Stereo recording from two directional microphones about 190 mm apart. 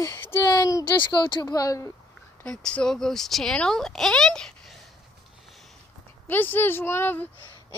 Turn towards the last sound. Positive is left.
turn(degrees=10)  # may be behind; listen again after turning